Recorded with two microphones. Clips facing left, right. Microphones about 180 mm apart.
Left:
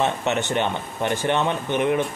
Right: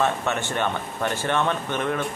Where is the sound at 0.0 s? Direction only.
20° left (ahead or behind).